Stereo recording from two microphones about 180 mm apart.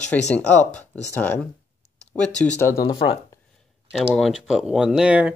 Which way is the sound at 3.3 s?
15° left (ahead or behind).